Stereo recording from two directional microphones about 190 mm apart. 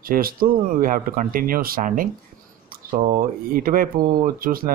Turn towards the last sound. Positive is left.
turn(degrees=-50)  # may be behind; listen again after turning